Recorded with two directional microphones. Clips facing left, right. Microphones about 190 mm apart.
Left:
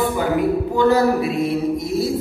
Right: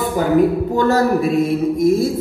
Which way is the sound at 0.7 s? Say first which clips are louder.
Left 3 dB; 45° right (ahead or behind).